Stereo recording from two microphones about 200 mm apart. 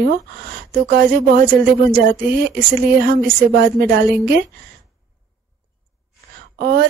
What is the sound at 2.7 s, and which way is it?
Speech, 50° right (ahead or behind).